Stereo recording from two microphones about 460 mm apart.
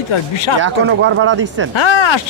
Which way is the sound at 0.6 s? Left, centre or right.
Right.